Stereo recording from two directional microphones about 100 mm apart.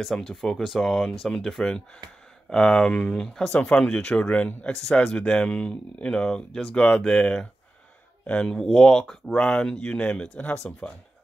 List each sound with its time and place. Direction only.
0.0 s speech: 5° left (ahead or behind)